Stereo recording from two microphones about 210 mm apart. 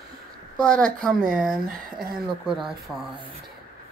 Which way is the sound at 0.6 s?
5° left (ahead or behind).